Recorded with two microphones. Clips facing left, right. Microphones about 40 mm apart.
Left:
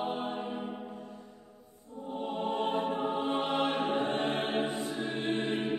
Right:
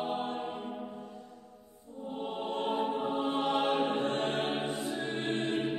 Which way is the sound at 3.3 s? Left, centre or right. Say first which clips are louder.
Right 1 dB; left.